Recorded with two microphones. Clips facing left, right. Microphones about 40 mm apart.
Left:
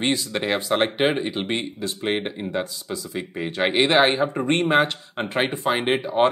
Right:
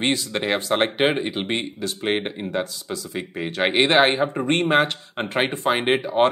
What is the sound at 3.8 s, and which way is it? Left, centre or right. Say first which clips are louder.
Speech: even; right.